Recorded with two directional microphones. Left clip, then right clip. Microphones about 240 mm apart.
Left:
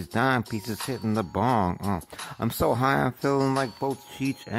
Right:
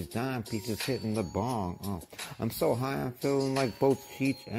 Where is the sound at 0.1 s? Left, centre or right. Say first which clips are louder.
Left 11 dB; centre.